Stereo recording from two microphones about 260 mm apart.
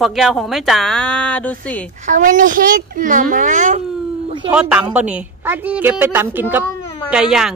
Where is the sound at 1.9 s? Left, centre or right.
Right.